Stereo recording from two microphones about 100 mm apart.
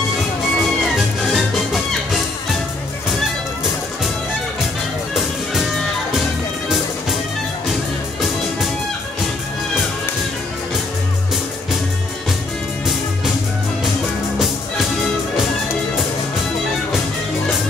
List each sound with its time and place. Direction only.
0.6 s music: centre (ahead or behind)
5.1 s music: centre (ahead or behind)